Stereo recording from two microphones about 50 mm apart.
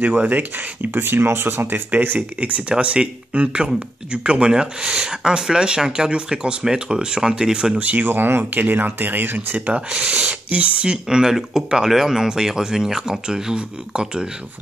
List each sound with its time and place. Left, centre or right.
0.0 s speech: right
1.9 s speech: right; by 7.8 s centre
7.8 s speech: right
8.1 s speech: right
9.8 s speech: centre